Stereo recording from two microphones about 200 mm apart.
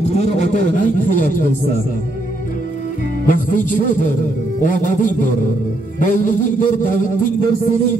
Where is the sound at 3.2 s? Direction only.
40° left (ahead or behind).